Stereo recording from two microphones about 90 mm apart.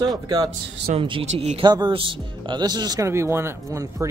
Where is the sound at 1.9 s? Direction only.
65° right (ahead or behind); by 3.0 s 50° right (ahead or behind).